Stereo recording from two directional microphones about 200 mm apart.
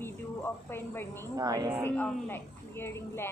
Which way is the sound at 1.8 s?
10° left (ahead or behind).